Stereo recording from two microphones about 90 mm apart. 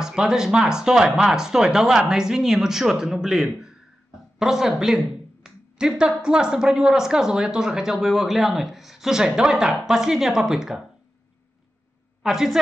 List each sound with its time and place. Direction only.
0.0 s speech: 5° right (ahead or behind)
12.2 s a woman's voice: 5° right (ahead or behind)